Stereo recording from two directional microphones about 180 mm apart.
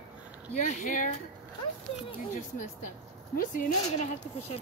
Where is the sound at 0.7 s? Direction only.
45° left (ahead or behind).